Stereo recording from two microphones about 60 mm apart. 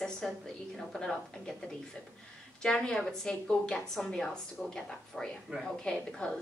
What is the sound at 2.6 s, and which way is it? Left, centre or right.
A woman's voice, centre.